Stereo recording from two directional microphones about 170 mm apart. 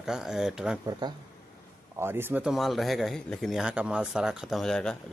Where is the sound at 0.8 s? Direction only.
25° right (ahead or behind).